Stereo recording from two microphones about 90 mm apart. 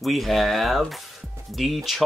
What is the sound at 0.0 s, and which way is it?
Speech, centre (ahead or behind).